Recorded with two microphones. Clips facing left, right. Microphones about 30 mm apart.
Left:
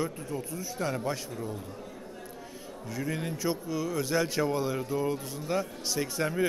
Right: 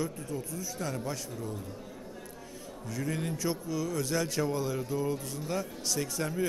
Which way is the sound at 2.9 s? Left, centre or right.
Centre.